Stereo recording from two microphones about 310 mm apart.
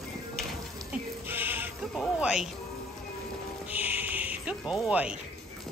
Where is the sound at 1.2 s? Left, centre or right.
Centre.